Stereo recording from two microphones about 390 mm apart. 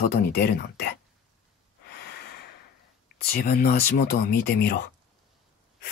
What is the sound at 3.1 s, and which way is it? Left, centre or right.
Speech, left.